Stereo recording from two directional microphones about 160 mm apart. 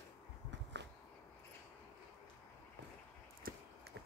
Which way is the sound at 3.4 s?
65° right (ahead or behind).